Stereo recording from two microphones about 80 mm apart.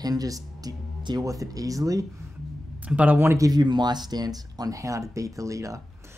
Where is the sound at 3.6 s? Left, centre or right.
Right.